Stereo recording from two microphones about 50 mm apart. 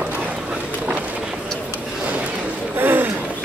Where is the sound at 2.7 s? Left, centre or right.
Right.